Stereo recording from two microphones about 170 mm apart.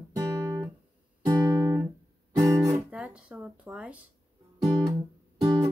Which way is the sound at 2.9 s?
5° right (ahead or behind).